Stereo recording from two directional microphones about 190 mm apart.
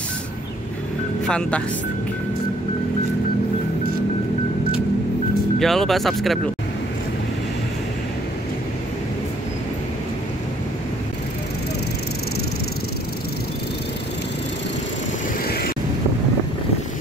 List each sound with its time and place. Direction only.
1.2 s speech: 5° left (ahead or behind)
5.6 s speech: centre (ahead or behind)
15.4 s vehicle: 55° left (ahead or behind)